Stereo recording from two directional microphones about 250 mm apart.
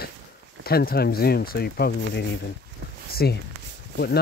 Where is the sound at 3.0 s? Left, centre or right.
Left.